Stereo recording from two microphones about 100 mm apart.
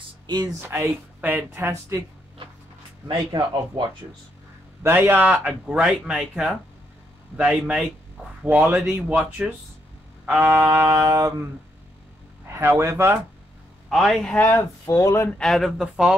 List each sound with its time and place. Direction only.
0.6 s speech: 25° right (ahead or behind)
3.1 s speech: 45° right (ahead or behind)
4.8 s speech: 20° right (ahead or behind)
9.1 s speech: 10° right (ahead or behind)
10.4 s speech: 25° right (ahead or behind)
12.4 s a man's voice: 30° right (ahead or behind)
13.8 s a man's voice: centre (ahead or behind)
14.3 s speech: 20° left (ahead or behind)
14.9 s speech: 30° left (ahead or behind)
15.3 s speech: 5° left (ahead or behind)